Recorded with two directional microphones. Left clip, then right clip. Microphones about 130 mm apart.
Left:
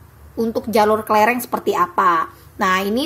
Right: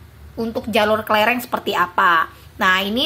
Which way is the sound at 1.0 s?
10° left (ahead or behind).